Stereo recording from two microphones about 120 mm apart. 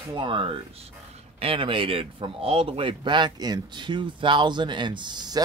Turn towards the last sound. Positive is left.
turn(degrees=-35)  # may be behind; listen again after turning